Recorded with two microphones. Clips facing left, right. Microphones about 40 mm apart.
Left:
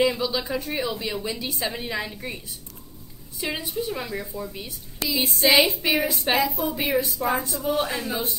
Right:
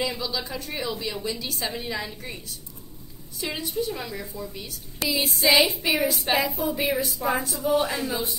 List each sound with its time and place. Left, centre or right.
0.0 s a woman's voice: centre
5.0 s a woman's voice: centre
6.3 s a woman's voice: centre
6.8 s a woman's voice: centre